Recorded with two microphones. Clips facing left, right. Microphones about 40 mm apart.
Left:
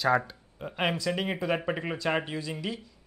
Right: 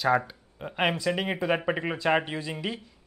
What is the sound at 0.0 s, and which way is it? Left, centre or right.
Speech, centre.